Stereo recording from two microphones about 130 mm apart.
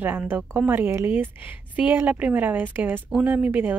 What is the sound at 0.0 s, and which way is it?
A woman's voice, 15° right (ahead or behind).